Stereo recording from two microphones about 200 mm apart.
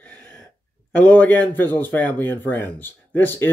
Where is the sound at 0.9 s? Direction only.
10° left (ahead or behind).